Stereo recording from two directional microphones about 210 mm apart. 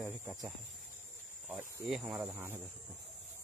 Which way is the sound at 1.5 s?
5° right (ahead or behind).